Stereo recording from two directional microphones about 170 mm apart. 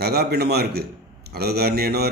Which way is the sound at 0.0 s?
70° right (ahead or behind).